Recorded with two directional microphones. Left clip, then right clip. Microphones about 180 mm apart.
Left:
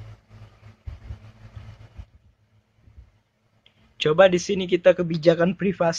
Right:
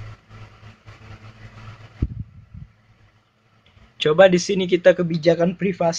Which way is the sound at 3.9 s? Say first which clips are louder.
Right 3 dB; 15° left (ahead or behind).